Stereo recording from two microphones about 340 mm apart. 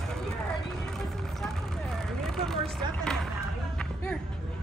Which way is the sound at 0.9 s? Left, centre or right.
Centre.